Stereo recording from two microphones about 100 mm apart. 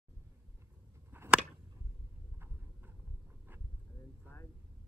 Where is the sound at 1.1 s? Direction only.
20° right (ahead or behind).